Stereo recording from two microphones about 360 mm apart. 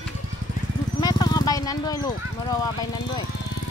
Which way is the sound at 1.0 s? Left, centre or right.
Centre.